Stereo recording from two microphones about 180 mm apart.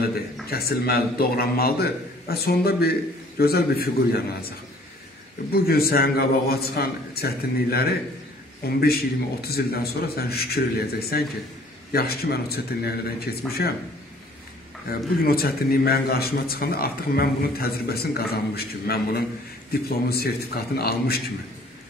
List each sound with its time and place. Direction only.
0.5 s a man's voice: 60° left (ahead or behind)
14.9 s a man's voice: 55° left (ahead or behind)